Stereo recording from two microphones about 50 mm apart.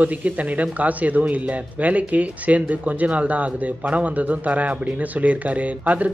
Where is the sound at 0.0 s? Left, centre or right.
Right.